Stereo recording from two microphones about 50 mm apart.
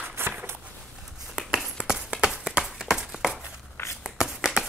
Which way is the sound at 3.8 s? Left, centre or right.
Left.